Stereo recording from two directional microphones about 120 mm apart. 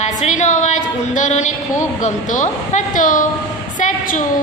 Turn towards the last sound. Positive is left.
turn(degrees=90)